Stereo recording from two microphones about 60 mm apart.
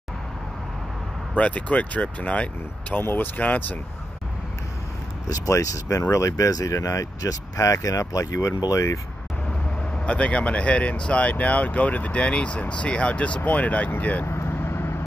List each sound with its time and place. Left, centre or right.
1.3 s speech: left
3.0 s speech: left
5.3 s speech: left
10.0 s speech: centre
14.2 s vehicle: left